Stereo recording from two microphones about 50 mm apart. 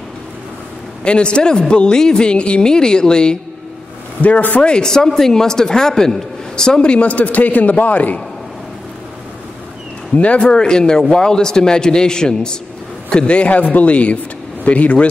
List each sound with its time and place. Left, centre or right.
1.0 s speech: centre
4.2 s speech: left
4.6 s speech: centre; by 8.2 s left
10.1 s a man's voice: left